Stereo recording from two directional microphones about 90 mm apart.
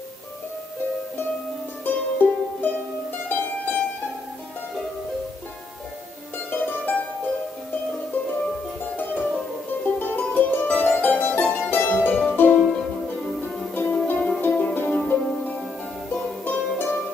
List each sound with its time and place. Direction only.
1.9 s music: 20° left (ahead or behind)
6.5 s music: 20° left (ahead or behind)
8.9 s music: 20° left (ahead or behind)
13.7 s music: 20° left (ahead or behind)